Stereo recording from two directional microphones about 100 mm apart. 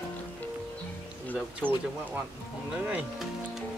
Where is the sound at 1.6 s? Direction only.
15° right (ahead or behind).